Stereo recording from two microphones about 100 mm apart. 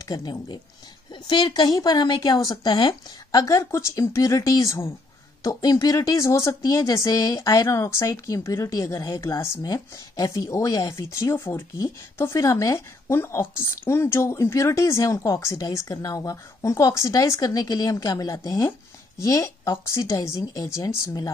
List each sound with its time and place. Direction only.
0.0 s speech: 40° left (ahead or behind)